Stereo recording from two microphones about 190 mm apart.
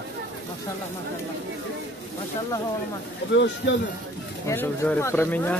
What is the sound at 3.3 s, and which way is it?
Speech, 65° left (ahead or behind).